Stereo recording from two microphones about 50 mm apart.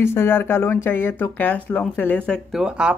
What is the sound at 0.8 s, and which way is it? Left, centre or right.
Speech, left.